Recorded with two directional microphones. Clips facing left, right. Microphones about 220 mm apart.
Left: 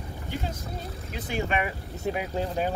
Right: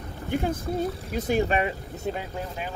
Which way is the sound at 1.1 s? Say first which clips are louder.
Right 5 dB; 45° right (ahead or behind).